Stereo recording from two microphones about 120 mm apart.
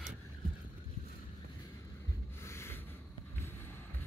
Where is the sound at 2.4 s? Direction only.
20° left (ahead or behind).